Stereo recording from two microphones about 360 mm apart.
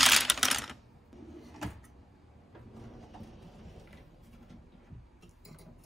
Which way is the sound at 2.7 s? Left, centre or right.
Centre.